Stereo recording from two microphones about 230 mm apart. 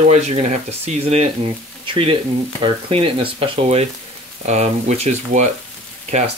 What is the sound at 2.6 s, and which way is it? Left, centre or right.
Speech, right.